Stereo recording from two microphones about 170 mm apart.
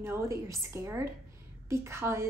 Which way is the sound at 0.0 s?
15° right (ahead or behind).